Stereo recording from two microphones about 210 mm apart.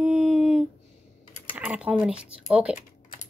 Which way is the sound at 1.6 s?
5° right (ahead or behind).